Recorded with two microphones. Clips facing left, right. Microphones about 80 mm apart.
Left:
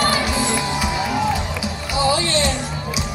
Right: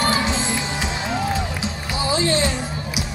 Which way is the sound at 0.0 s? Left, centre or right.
Right.